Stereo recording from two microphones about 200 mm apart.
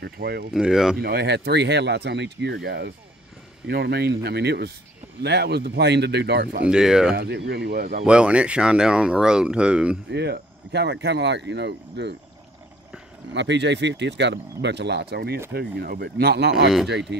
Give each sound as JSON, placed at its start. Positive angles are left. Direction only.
{"t": 0.0, "sound": "speech", "side_deg": -50}
{"t": 0.5, "sound": "speech", "side_deg": -5}
{"t": 0.9, "sound": "speech", "side_deg": -50}
{"t": 6.6, "sound": "speech", "side_deg": -5}
{"t": 7.2, "sound": "speech", "side_deg": -55}
{"t": 8.0, "sound": "speech", "side_deg": -5}
{"t": 10.1, "sound": "speech", "side_deg": -55}
{"t": 13.3, "sound": "speech", "side_deg": -60}